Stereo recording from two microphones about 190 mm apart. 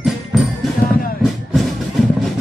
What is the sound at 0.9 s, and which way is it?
Music, 50° left (ahead or behind).